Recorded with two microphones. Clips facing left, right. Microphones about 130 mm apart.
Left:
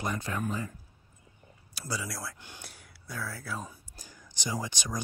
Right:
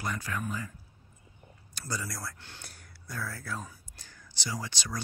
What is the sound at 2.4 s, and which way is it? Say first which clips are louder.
Speech: left 1 dB; 15° left (ahead or behind).